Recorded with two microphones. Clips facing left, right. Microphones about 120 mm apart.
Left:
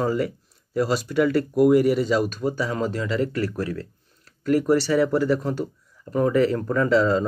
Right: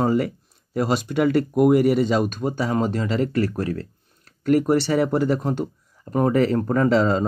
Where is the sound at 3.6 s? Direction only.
50° right (ahead or behind).